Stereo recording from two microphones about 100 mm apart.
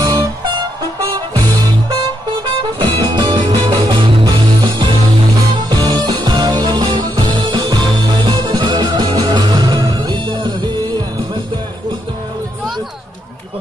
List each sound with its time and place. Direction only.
2.8 s music: 45° right (ahead or behind)